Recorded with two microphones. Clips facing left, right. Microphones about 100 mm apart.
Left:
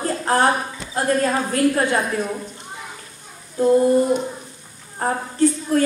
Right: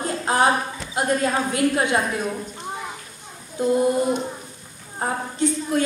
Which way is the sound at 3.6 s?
20° right (ahead or behind).